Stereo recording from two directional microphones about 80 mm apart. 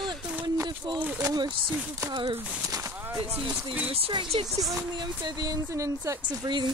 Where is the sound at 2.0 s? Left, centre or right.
Right.